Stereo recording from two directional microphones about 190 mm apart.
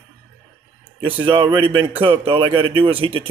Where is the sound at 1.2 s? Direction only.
25° right (ahead or behind).